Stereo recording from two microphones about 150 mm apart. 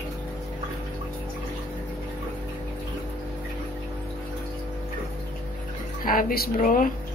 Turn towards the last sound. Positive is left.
turn(degrees=65)  # may be behind; listen again after turning